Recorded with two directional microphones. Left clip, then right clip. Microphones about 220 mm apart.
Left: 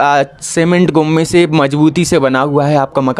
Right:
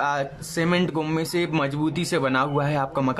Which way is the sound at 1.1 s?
35° left (ahead or behind).